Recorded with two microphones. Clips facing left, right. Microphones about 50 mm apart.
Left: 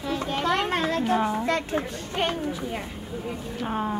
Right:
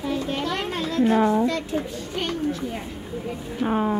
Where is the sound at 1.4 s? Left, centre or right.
Left.